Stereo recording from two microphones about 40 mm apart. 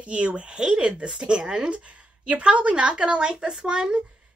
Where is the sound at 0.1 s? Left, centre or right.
Right.